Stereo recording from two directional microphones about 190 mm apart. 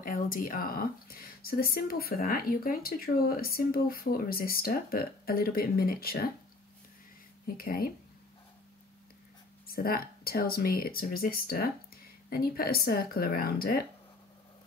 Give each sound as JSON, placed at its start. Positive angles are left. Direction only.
{"t": 0.0, "sound": "speech", "side_deg": 45}
{"t": 7.4, "sound": "speech", "side_deg": 50}
{"t": 9.7, "sound": "speech", "side_deg": 50}